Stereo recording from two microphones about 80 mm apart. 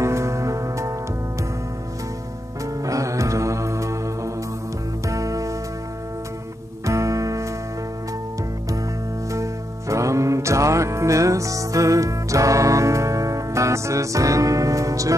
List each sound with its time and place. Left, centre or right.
0.0 s music: right
2.6 s music: right
6.9 s music: right
9.3 s music: right